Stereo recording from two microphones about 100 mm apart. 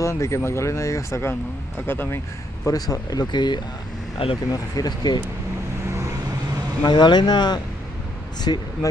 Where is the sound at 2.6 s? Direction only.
35° left (ahead or behind).